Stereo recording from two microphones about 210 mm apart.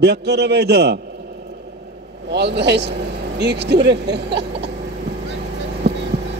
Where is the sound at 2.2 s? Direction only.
55° right (ahead or behind).